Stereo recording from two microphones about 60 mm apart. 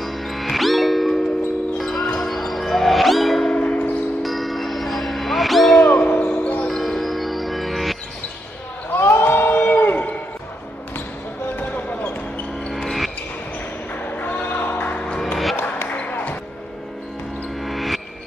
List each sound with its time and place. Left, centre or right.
0.0 s music: centre
4.2 s music: centre
5.8 s music: left
6.7 s music: centre
8.9 s a sound: left
11.5 s basketball bounce: left
12.7 s music: centre
14.0 s a sound: left
15.5 s basketball bounce: left
17.6 s music: centre